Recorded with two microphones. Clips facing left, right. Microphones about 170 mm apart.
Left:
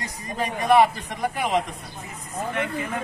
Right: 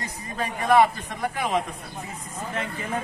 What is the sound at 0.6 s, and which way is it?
A man's voice, 15° left (ahead or behind).